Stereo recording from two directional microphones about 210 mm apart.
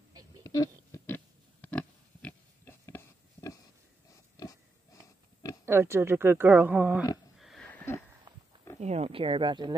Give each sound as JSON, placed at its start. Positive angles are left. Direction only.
{"t": 0.4, "sound": "oink", "side_deg": 15}
{"t": 5.7, "sound": "speech", "side_deg": -10}
{"t": 7.3, "sound": "a sound", "side_deg": 0}
{"t": 8.7, "sound": "speech", "side_deg": -30}